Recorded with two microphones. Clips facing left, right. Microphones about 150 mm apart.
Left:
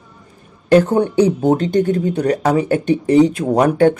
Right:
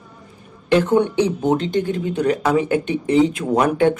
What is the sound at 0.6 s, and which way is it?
Speech, 35° left (ahead or behind).